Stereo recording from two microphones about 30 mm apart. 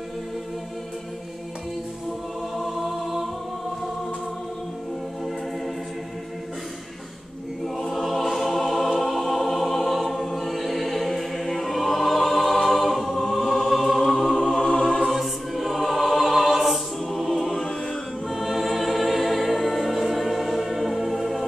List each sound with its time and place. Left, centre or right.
2.5 s music: centre
7.6 s choir: centre
14.7 s music: left
15.0 s choir: centre